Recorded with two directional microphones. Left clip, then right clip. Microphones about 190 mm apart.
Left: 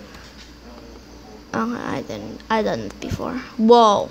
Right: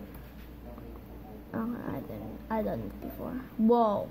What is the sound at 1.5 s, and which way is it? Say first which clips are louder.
Speech: left 12 dB; 40° left (ahead or behind).